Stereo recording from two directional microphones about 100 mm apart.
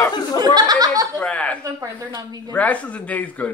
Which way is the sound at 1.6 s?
35° right (ahead or behind).